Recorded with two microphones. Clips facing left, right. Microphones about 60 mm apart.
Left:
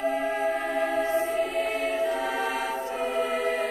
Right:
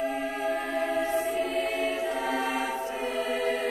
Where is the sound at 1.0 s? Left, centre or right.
Left.